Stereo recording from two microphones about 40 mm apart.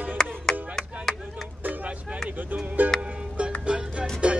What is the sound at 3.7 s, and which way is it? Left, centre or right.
Music, right.